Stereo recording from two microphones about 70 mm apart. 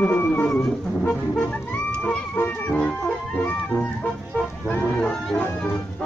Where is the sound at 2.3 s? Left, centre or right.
Left.